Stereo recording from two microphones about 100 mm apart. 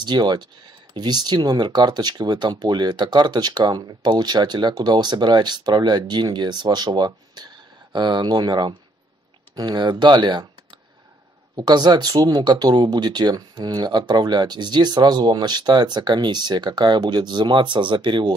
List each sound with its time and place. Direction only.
0.0 s speech: 45° right (ahead or behind)
11.5 s speech: 45° right (ahead or behind)